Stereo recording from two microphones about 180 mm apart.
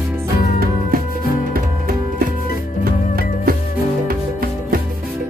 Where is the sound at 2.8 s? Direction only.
55° right (ahead or behind).